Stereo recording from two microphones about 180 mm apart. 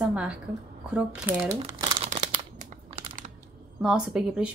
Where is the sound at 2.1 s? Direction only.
40° right (ahead or behind).